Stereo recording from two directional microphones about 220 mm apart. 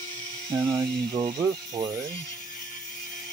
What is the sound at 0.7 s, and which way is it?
Speech, 20° right (ahead or behind).